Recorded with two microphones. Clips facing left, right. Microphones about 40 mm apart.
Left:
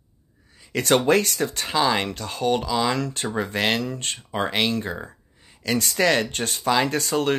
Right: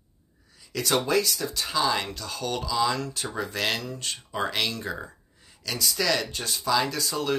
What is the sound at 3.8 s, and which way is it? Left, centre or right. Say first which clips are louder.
Speech: left 5 dB; left.